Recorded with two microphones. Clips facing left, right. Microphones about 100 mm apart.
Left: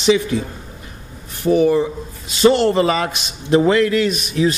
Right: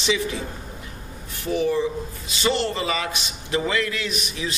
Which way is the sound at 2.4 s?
45° left (ahead or behind).